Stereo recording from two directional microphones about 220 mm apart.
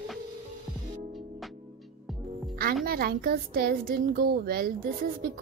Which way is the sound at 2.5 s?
45° right (ahead or behind).